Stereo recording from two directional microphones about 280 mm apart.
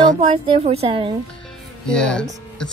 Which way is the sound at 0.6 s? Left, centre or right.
Right.